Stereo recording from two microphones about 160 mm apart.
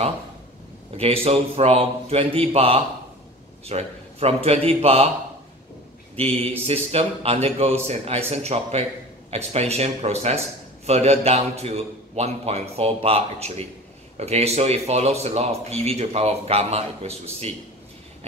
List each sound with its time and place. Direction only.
0.9 s speech: 40° right (ahead or behind)
6.1 s speech: 40° right (ahead or behind)